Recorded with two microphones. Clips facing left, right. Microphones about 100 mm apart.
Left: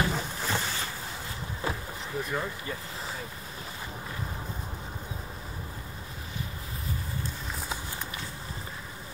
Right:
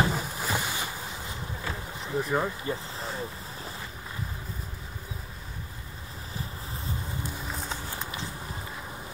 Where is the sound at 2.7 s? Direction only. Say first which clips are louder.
Right 5 dB; 25° right (ahead or behind).